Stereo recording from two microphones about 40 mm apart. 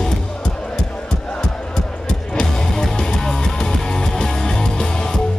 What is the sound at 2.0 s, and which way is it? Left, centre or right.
Music, centre.